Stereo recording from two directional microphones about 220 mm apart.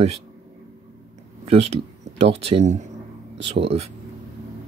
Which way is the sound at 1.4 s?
30° right (ahead or behind).